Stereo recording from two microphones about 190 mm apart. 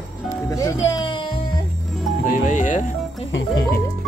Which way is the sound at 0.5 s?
15° left (ahead or behind).